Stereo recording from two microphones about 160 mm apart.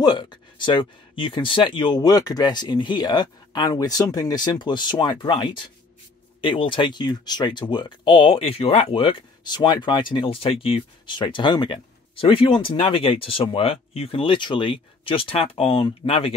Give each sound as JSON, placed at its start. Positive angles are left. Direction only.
{"t": 0.0, "sound": "speech", "side_deg": 30}